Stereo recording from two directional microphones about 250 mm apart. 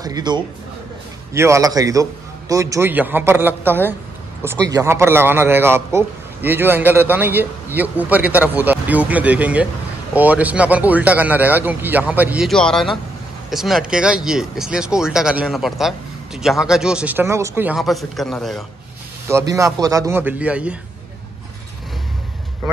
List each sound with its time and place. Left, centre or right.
0.0 s a man's voice: centre
19.2 s a man's voice: centre